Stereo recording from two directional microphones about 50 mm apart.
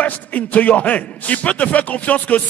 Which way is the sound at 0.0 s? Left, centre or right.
Left.